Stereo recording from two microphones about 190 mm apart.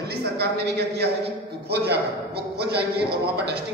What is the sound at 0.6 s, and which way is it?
Speech, 60° right (ahead or behind).